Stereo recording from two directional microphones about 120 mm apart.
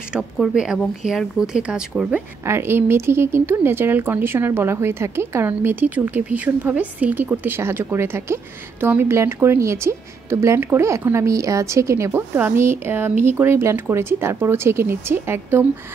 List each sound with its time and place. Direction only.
0.1 s speech: 5° right (ahead or behind)
2.4 s speech: 20° right (ahead or behind)